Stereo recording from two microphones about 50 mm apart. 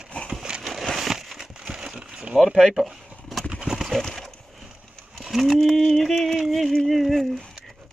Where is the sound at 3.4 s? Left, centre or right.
Centre.